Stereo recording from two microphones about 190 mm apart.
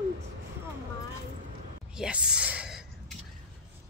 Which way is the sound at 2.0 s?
5° right (ahead or behind).